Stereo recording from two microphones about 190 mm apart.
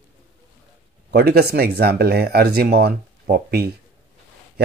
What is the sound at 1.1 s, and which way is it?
Speech, 55° right (ahead or behind).